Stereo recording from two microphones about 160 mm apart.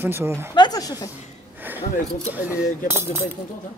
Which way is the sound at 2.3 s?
10° right (ahead or behind).